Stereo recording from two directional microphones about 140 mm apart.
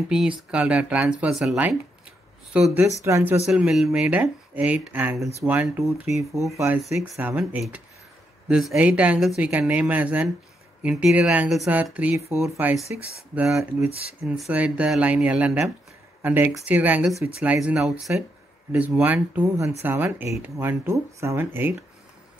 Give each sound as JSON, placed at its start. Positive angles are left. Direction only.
{"t": 0.1, "sound": "a woman's voice", "side_deg": -5}
{"t": 3.0, "sound": "speech", "side_deg": -20}
{"t": 3.4, "sound": "a woman's voice", "side_deg": -5}
{"t": 7.2, "sound": "a woman's voice", "side_deg": -10}